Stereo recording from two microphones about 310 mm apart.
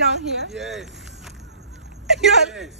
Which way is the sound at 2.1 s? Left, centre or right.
Centre.